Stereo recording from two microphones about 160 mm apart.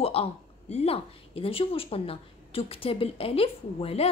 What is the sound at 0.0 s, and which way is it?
A woman's voice, 40° left (ahead or behind).